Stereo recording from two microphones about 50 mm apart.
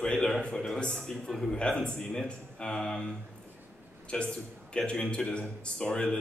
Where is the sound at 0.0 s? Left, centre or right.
Left.